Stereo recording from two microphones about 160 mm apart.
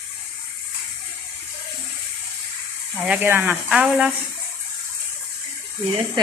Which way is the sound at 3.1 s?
15° right (ahead or behind).